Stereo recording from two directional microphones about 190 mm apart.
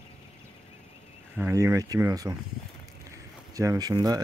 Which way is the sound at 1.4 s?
15° right (ahead or behind).